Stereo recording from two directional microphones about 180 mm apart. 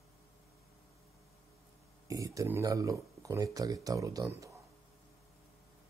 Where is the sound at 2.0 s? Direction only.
20° right (ahead or behind).